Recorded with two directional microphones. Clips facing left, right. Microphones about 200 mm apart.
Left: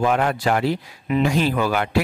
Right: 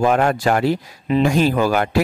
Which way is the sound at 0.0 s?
45° right (ahead or behind).